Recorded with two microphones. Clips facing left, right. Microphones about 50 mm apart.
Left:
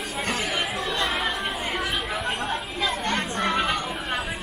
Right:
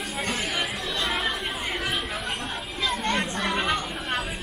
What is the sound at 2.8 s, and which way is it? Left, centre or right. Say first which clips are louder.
Children playing: right 1 dB; centre.